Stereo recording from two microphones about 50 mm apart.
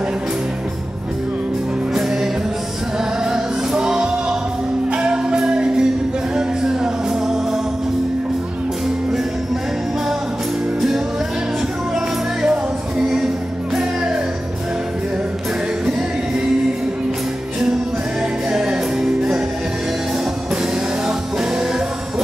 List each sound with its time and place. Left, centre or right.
3.3 s music: centre
11.9 s music: centre
18.5 s music: centre
21.4 s music: centre